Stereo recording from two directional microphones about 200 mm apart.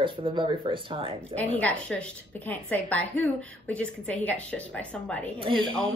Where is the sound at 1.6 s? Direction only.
5° left (ahead or behind).